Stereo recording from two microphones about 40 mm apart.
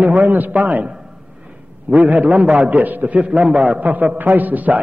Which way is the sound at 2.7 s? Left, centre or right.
Right.